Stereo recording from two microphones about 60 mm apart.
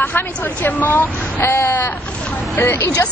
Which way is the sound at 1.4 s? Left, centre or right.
Left.